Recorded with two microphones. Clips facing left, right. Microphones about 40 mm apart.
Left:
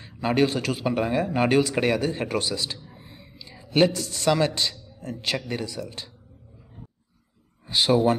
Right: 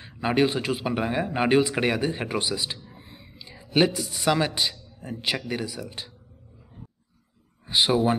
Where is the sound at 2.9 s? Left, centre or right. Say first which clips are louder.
Even; centre.